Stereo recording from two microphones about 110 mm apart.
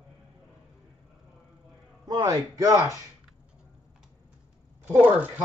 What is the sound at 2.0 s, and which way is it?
Speech, 35° right (ahead or behind).